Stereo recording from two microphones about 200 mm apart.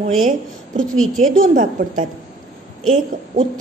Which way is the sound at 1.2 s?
40° right (ahead or behind).